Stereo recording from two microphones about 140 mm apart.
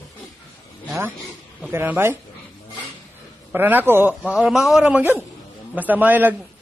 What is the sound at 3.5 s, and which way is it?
Speech, 15° right (ahead or behind).